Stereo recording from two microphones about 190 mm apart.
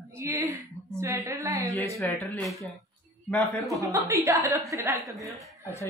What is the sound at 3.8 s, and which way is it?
A woman's voice, 15° right (ahead or behind).